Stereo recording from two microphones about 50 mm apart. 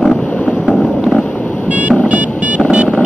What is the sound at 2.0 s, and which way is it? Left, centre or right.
Music, right.